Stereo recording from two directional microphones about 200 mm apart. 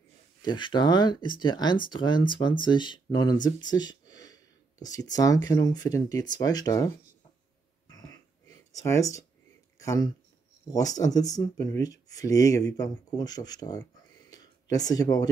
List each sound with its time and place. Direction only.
0.4 s speech: 25° left (ahead or behind)
7.9 s a sound: 20° left (ahead or behind)
9.8 s speech: 15° left (ahead or behind)